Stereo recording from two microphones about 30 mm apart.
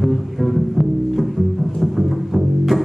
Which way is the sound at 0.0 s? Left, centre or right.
Centre.